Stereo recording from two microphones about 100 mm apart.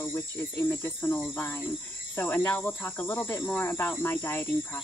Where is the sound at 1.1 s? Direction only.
10° left (ahead or behind).